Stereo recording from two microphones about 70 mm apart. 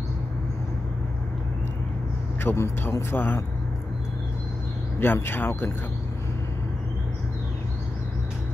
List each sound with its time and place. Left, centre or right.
2.4 s a man's voice: left
5.0 s a man's voice: left